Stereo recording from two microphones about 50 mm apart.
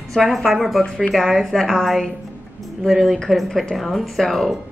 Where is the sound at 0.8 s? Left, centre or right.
Centre.